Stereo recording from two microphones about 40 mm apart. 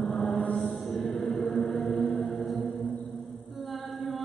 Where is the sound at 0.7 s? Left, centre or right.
Centre.